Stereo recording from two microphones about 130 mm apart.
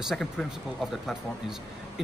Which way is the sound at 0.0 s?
Centre (ahead or behind).